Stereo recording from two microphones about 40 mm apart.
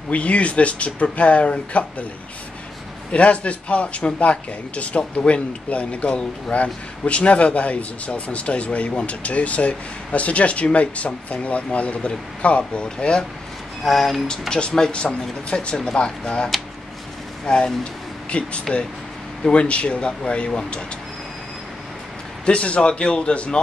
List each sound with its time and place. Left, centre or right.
0.1 s speech: left
3.1 s speech: left
13.8 s speech: centre
14.5 s speech: left
17.5 s speech: centre
18.3 s speech: left
22.4 s speech: left